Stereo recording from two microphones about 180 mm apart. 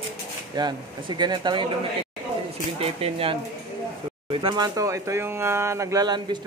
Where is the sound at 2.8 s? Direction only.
30° right (ahead or behind).